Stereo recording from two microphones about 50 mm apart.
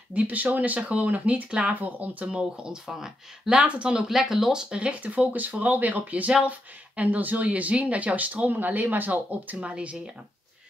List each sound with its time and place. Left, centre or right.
0.1 s speech: right
2.2 s speech: centre
3.6 s speech: right
4.1 s speech: centre
5.0 s speech: right